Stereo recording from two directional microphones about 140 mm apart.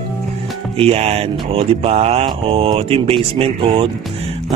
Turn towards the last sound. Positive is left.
turn(degrees=-40)  # may be behind; listen again after turning